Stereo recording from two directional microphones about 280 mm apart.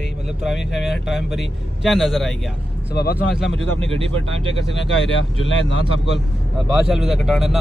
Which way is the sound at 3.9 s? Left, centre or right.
Centre.